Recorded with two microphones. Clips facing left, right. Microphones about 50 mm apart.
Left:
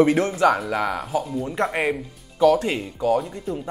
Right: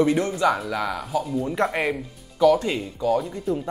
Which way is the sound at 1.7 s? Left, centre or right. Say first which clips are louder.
Left 1 dB; centre.